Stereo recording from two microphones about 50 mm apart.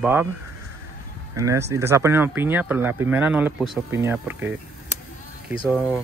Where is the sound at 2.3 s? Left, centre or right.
Right.